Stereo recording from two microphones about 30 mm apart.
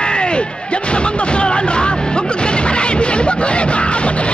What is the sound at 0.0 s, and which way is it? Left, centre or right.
Speech, left.